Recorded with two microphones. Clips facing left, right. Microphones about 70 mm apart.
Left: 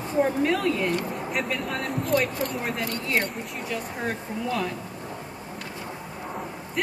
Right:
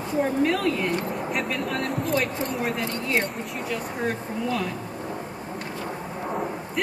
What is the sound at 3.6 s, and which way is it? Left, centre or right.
Speech, centre.